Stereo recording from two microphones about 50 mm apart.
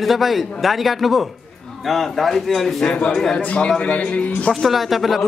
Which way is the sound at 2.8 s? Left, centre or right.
Left.